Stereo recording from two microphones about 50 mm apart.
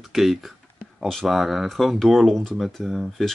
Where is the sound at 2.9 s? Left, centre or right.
Centre.